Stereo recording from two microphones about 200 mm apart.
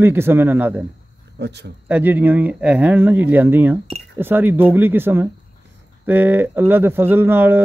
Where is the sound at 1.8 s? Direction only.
10° right (ahead or behind).